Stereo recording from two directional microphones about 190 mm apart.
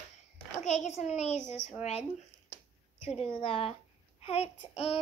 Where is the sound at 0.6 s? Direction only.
35° left (ahead or behind).